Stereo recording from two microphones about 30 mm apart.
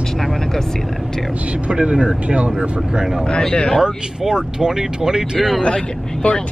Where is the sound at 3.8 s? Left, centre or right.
Right.